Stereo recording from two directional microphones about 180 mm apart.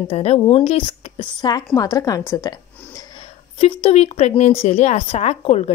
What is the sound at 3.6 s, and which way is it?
A woman's voice, 35° left (ahead or behind).